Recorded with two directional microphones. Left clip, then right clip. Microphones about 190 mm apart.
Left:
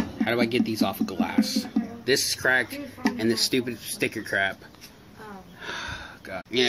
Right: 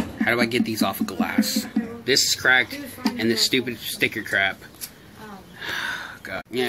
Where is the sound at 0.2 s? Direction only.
10° left (ahead or behind).